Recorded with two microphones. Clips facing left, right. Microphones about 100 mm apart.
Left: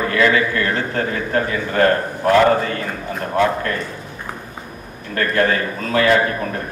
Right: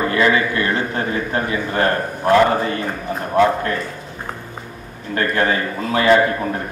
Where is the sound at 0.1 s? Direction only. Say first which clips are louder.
Left 3 dB; 20° right (ahead or behind).